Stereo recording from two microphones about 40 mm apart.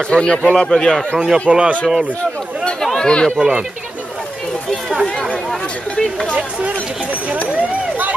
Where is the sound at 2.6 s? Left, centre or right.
Left.